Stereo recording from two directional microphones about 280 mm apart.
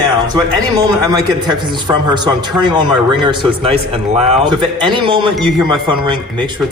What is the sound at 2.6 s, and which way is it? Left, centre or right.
A man's voice, centre.